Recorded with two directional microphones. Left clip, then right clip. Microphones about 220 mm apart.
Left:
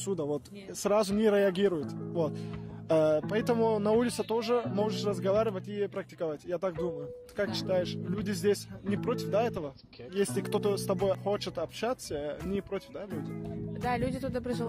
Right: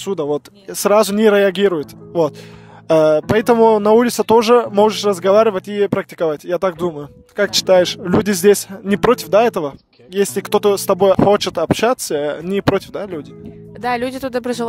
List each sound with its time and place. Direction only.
0.0 s speech: 50° right (ahead or behind)